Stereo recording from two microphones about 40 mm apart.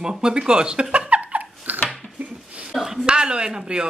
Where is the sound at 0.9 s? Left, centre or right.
Right.